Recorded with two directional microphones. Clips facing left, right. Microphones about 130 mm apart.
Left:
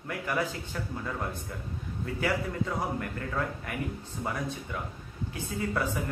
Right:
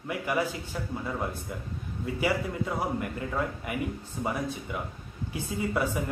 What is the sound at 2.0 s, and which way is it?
A man's voice, 15° right (ahead or behind).